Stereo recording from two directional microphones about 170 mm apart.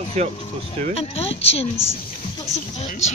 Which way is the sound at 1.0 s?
35° left (ahead or behind).